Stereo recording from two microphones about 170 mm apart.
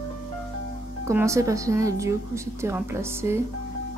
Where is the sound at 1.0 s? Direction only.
15° right (ahead or behind).